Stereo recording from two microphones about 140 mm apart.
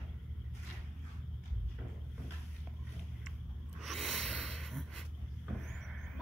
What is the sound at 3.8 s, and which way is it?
Snort, centre (ahead or behind).